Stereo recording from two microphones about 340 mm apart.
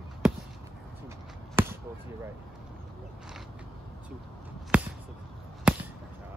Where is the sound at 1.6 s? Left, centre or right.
Centre.